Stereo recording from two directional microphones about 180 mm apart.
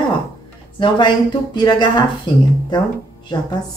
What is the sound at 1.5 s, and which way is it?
A woman's voice, 25° left (ahead or behind).